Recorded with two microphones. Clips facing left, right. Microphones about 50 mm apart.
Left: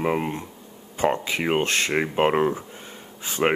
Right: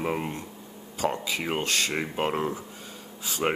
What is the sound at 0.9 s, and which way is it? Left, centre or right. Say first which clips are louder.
Speech: left 5 dB; left.